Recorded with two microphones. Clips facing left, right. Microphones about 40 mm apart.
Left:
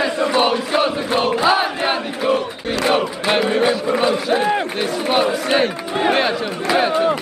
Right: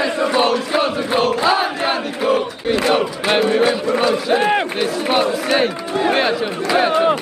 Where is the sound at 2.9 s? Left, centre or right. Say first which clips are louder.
Right 1 dB; centre.